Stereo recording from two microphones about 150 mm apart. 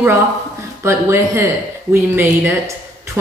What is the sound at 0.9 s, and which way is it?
Speech, 20° right (ahead or behind).